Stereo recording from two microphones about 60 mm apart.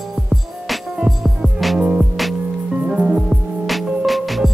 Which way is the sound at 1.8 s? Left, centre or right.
Centre.